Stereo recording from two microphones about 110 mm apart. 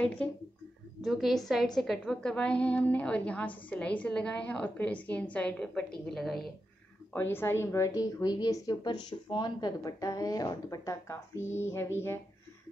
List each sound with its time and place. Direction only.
0.0 s a woman's voice: 10° left (ahead or behind)
1.0 s a woman's voice: centre (ahead or behind)
7.1 s a woman's voice: 20° left (ahead or behind)